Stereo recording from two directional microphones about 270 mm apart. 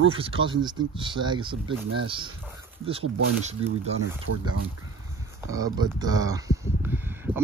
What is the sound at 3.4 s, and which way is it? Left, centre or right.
Speech, right.